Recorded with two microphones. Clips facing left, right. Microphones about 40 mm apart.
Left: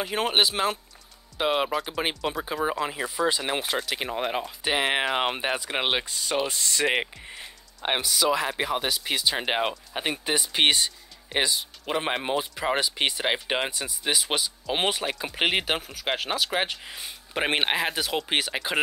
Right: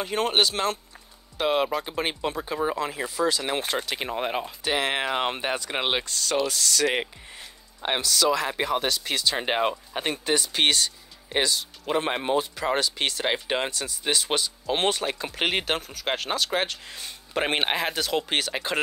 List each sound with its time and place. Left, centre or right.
0.0 s speech: centre
3.5 s speech: centre
4.6 s speech: centre